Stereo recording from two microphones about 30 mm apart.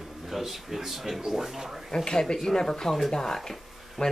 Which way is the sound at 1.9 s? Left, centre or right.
Left.